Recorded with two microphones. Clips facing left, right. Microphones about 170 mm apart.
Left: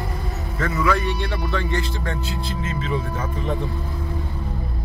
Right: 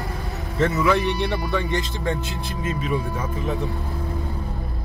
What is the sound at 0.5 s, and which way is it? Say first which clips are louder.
Speech: right 2 dB; 20° right (ahead or behind).